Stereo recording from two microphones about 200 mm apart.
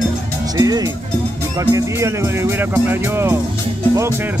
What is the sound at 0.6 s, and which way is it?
Speech, 20° right (ahead or behind).